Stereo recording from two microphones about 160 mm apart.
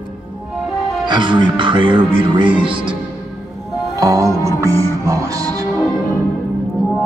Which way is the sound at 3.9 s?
20° right (ahead or behind).